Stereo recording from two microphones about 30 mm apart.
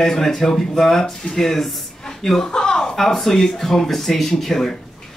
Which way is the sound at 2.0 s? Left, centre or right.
Centre.